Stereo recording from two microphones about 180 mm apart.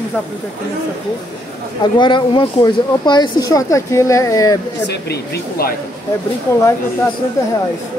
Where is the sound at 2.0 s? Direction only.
25° left (ahead or behind).